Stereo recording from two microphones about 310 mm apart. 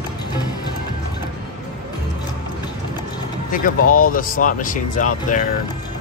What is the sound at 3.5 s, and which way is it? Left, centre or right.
Speech, left.